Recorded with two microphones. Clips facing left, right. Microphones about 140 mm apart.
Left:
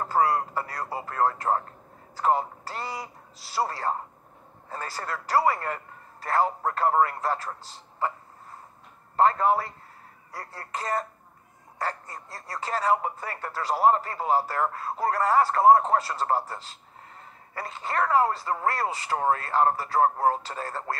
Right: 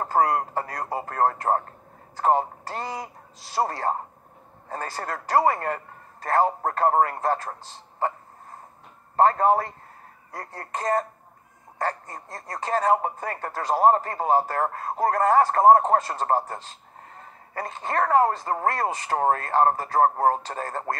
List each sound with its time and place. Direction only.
0.0 s speech: 40° right (ahead or behind)
9.1 s speech: 40° right (ahead or behind)